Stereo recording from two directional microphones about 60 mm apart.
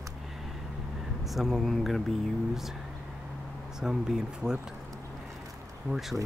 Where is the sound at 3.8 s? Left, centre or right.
Centre.